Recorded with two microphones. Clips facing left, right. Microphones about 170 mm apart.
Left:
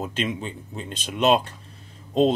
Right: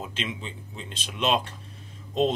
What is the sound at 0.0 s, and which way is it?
Speech, 45° left (ahead or behind).